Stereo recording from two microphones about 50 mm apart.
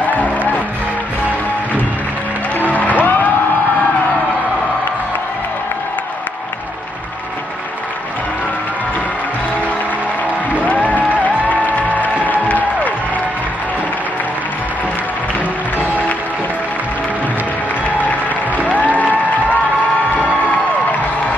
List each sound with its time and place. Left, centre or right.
0.0 s music: left
2.7 s music: left
10.5 s music: left